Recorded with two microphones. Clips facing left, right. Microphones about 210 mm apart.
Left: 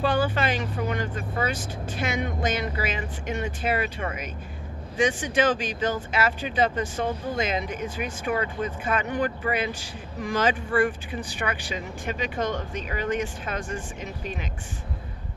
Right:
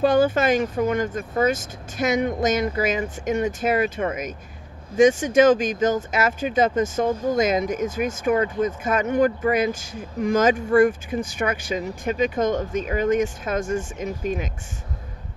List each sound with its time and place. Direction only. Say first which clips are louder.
0.0 s speech: right 6 dB; 45° right (ahead or behind)